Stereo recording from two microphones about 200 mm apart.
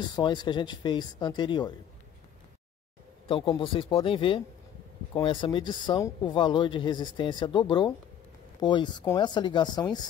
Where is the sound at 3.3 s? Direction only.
25° left (ahead or behind).